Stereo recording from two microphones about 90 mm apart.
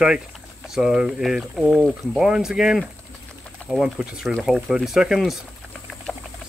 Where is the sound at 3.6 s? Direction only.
15° left (ahead or behind).